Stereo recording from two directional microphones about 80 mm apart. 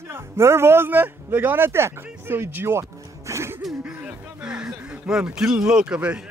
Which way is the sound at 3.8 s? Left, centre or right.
Centre.